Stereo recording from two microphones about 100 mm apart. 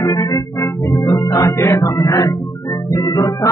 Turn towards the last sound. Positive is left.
turn(degrees=35)  # may be behind; listen again after turning